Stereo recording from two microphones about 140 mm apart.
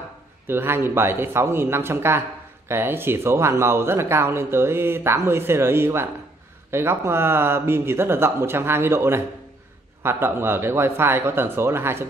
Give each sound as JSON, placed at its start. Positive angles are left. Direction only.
{"t": 0.5, "sound": "speech", "side_deg": -15}